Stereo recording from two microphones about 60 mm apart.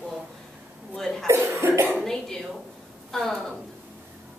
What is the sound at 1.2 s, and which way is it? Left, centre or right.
Speech, right.